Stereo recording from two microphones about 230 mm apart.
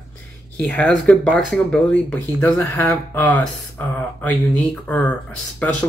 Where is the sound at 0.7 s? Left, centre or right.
Centre.